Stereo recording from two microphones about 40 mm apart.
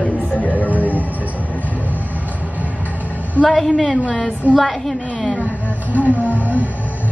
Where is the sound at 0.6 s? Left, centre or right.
Left.